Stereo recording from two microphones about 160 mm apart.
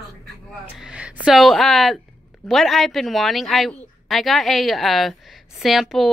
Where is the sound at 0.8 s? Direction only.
5° right (ahead or behind).